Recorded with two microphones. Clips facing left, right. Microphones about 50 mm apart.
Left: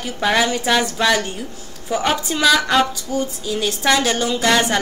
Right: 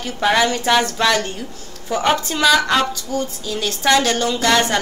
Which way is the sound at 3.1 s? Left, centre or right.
Centre.